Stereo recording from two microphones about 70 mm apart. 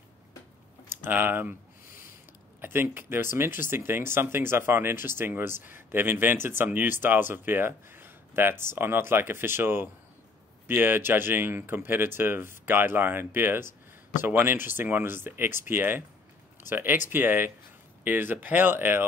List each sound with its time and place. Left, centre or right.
0.8 s speech: right
2.6 s speech: right